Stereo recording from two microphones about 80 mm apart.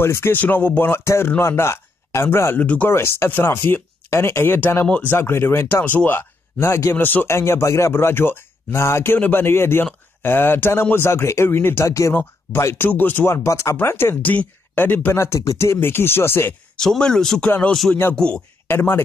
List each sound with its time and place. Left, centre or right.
0.0 s speech: left
2.9 s speech: left
11.8 s speech: left
12.1 s speech: left
13.3 s speech: left
16.7 s speech: centre
17.5 s speech: centre
18.7 s speech: left